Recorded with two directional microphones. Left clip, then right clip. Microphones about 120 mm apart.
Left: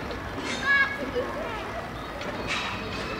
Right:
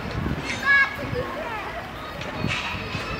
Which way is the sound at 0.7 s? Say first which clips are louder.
Right 4 dB; 40° right (ahead or behind).